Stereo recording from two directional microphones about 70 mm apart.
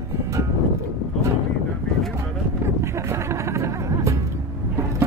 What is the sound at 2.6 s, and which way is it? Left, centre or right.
Music, right.